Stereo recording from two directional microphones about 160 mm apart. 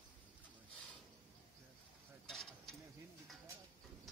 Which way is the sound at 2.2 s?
Centre (ahead or behind).